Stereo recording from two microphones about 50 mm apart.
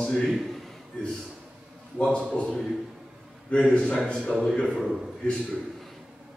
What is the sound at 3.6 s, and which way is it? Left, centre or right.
A man's voice, centre.